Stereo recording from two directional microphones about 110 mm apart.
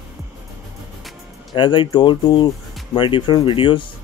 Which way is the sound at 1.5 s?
50° left (ahead or behind).